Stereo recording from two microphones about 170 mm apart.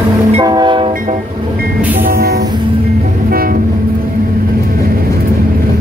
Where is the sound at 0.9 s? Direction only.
55° right (ahead or behind).